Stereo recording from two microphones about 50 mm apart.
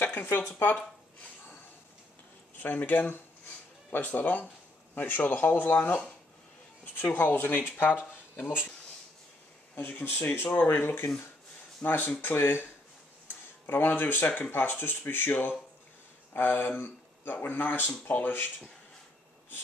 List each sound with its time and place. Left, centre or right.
0.0 s a sound: left
0.5 s speech: left
2.6 s speech: left
9.8 s speech: left
13.7 s speech: left